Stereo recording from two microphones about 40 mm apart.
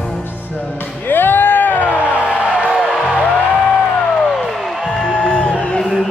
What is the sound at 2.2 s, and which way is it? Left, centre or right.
Music, right.